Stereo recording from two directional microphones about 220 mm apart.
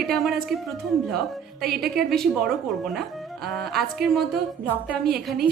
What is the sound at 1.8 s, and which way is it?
Speech, centre (ahead or behind).